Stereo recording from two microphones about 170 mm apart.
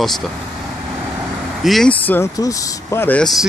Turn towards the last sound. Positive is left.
turn(degrees=10)  # may be behind; listen again after turning